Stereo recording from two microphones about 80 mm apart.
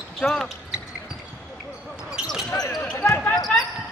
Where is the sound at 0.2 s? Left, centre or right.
Centre.